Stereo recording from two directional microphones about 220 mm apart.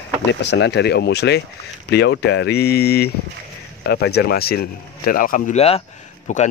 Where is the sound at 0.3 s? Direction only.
55° left (ahead or behind).